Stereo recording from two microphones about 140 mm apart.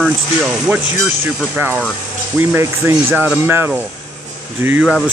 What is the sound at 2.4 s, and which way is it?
Speech, 15° right (ahead or behind).